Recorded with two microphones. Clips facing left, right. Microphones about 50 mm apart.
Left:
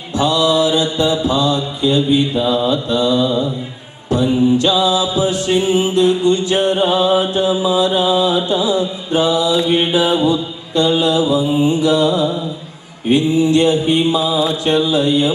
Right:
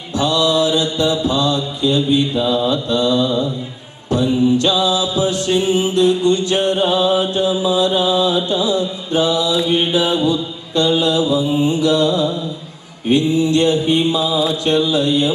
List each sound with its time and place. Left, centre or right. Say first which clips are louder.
0.2 s mantra: left 2 dB; centre